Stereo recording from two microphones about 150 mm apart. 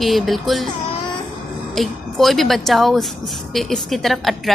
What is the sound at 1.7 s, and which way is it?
Speech, centre (ahead or behind).